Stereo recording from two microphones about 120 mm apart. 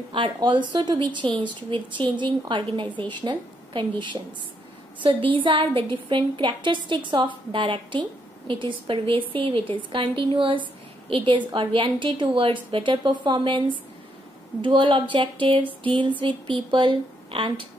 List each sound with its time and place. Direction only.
0.1 s a woman's voice: 40° right (ahead or behind)